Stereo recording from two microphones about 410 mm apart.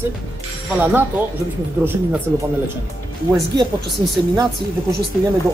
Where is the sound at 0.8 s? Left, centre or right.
Centre.